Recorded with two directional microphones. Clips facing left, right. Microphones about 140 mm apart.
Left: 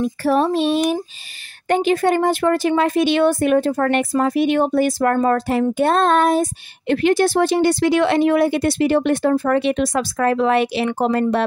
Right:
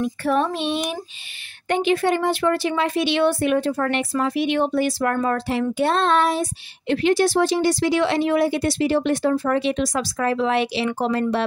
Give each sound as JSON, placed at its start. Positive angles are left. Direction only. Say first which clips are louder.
{"t": 0.0, "sound": "child singing", "louder": "left 4 dB", "side_deg": 35}
{"t": 1.7, "sound": "speech", "louder": "left 3 dB", "side_deg": 40}